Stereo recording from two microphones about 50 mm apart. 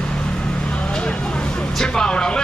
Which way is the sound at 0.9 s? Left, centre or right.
Centre.